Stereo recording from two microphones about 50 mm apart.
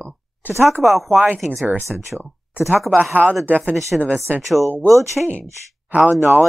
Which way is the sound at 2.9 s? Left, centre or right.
Right.